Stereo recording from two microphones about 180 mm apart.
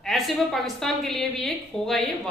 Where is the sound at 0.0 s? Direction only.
Centre (ahead or behind).